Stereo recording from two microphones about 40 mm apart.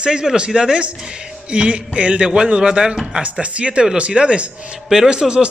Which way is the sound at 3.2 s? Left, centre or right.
Right.